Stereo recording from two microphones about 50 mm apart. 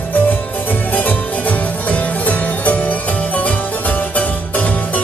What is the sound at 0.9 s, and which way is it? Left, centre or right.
Music, left.